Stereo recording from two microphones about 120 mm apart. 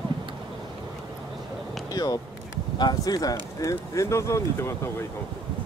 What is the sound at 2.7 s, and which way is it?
Speech, 35° left (ahead or behind).